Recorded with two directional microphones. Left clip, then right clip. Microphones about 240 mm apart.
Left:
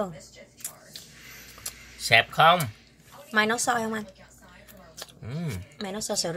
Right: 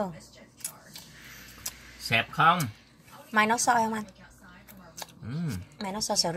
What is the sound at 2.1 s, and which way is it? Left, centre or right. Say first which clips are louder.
Speech: left 4 dB; left.